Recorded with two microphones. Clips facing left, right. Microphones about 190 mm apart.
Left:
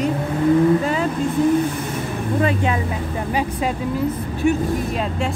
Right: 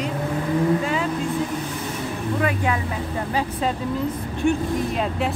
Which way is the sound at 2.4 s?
25° left (ahead or behind).